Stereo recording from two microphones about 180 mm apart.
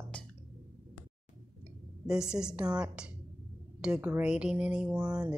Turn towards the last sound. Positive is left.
turn(degrees=-25)  # may be behind; listen again after turning